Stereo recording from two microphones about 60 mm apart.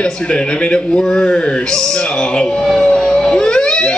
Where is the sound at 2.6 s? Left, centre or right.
Centre.